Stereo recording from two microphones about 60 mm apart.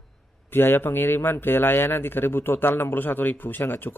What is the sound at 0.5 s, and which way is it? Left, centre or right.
A man's voice, left.